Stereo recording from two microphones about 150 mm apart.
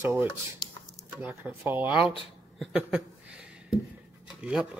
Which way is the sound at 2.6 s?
5° right (ahead or behind).